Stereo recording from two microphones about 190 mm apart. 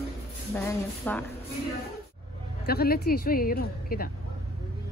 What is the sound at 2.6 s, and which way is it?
Speech, 55° left (ahead or behind).